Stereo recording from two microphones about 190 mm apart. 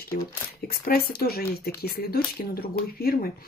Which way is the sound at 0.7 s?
55° left (ahead or behind).